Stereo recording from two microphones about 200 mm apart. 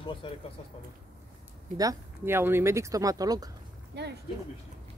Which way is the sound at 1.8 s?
15° right (ahead or behind).